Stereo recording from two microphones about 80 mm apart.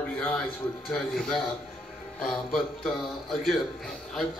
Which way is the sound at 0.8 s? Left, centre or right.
Centre.